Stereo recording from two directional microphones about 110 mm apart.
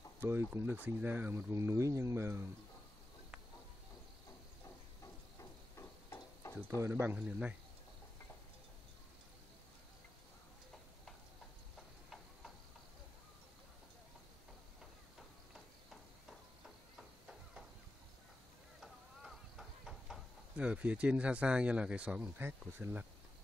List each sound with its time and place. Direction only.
0.2 s speech: 20° right (ahead or behind)
5.4 s a sound: 25° left (ahead or behind)
6.7 s speech: 25° right (ahead or behind)
15.1 s a sound: centre (ahead or behind)
18.8 s clip-clop: centre (ahead or behind)
20.5 s speech: 10° right (ahead or behind)